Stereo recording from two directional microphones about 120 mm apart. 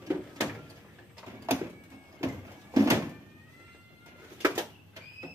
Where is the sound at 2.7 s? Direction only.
25° right (ahead or behind).